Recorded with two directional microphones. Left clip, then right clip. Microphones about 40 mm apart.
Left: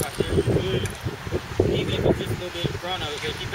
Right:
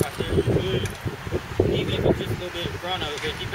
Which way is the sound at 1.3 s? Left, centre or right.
Left.